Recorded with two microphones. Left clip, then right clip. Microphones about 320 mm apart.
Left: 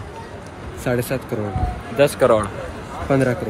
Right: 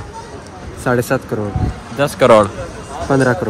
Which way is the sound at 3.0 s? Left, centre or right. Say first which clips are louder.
Right 4 dB; centre.